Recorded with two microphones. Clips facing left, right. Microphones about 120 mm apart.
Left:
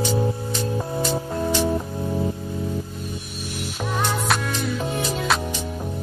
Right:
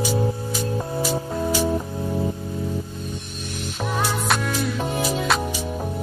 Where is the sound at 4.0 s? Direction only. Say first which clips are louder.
Even; 5° right (ahead or behind).